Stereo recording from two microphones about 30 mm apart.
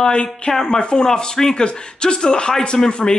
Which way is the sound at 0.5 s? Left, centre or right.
Left.